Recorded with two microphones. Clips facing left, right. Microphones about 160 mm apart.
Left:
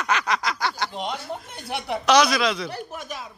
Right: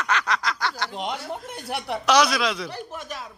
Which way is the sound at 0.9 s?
15° right (ahead or behind).